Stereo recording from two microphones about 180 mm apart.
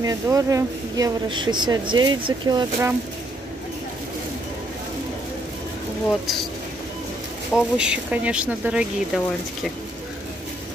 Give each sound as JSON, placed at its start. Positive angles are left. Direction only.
{"t": 0.0, "sound": "speech", "side_deg": -20}
{"t": 7.5, "sound": "speech", "side_deg": -5}